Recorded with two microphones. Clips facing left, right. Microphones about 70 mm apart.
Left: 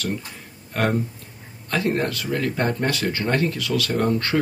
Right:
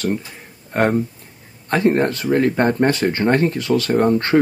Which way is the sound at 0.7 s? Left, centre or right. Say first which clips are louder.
Right 5 dB; right.